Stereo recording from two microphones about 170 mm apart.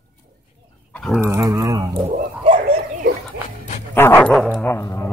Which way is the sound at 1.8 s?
30° right (ahead or behind).